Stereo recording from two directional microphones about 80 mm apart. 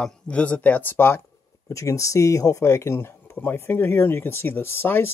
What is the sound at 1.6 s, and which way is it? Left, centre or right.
Speech, left.